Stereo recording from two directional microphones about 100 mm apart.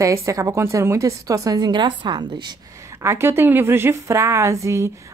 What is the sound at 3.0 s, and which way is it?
A woman's voice, 25° right (ahead or behind).